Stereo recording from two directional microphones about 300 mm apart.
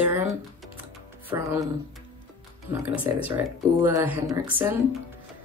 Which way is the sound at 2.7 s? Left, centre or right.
Centre.